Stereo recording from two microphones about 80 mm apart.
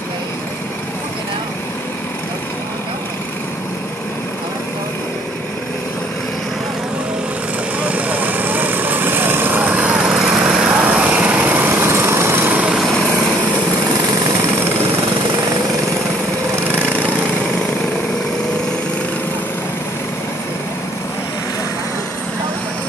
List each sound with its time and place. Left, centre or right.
7.8 s vehicle: centre